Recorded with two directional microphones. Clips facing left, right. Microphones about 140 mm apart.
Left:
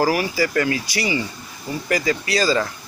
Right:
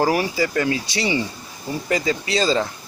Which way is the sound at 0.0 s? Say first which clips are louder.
Even; 25° right (ahead or behind).